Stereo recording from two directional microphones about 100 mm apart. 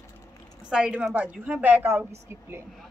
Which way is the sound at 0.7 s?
10° right (ahead or behind).